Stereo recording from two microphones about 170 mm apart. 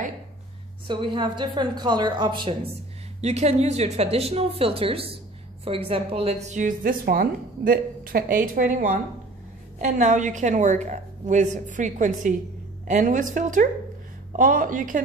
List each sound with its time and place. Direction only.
0.8 s a woman's voice: 30° right (ahead or behind)
3.2 s a woman's voice: 40° right (ahead or behind)